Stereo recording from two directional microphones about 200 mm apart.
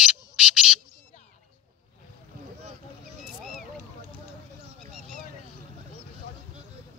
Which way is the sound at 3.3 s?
Centre (ahead or behind).